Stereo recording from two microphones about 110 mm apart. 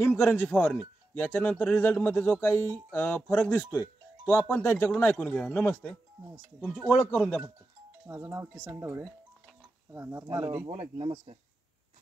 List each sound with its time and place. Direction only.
0.0 s speech: 20° left (ahead or behind)
8.1 s speech: 25° right (ahead or behind)
10.7 s speech: 55° right (ahead or behind)